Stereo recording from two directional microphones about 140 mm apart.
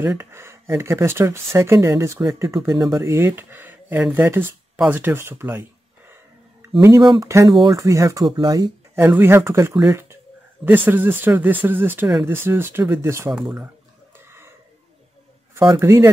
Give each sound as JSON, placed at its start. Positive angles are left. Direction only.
{"t": 0.0, "sound": "speech", "side_deg": -20}
{"t": 7.1, "sound": "speech", "side_deg": -20}
{"t": 8.9, "sound": "speech", "side_deg": -15}
{"t": 13.3, "sound": "speech", "side_deg": -5}
{"t": 14.1, "sound": "a sound", "side_deg": -15}
{"t": 15.8, "sound": "speech", "side_deg": -20}